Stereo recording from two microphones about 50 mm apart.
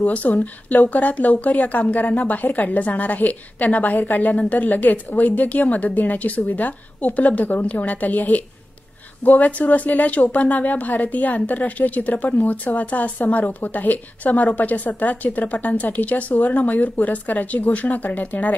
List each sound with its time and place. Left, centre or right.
0.0 s speech: left
9.4 s speech: left